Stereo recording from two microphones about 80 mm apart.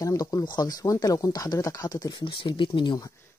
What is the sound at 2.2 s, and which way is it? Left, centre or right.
Speech, left.